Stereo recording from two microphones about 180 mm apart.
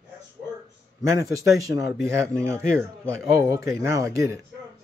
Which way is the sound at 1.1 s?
20° right (ahead or behind).